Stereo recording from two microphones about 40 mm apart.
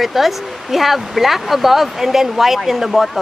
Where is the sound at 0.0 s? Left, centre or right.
Centre.